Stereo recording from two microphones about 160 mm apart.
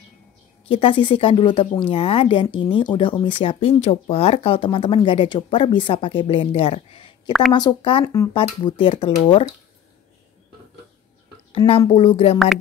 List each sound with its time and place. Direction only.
0.7 s speech: 35° left (ahead or behind)
8.3 s speech: 35° left (ahead or behind)
11.5 s a woman's voice: 35° left (ahead or behind)